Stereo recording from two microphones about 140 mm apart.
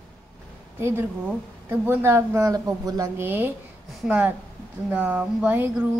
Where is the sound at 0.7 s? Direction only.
20° right (ahead or behind).